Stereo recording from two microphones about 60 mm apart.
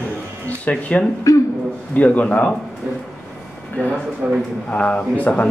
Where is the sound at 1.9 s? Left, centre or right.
Left.